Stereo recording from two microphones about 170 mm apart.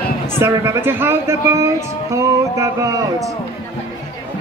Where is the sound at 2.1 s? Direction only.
20° right (ahead or behind).